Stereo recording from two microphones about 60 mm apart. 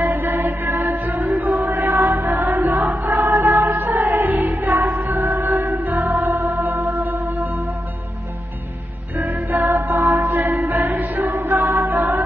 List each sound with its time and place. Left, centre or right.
0.0 s chant: right
1.3 s music: right
3.0 s music: right
5.6 s music: right
5.9 s music: right
9.1 s music: right
9.6 s music: right
11.6 s a capella: right
12.0 s music: right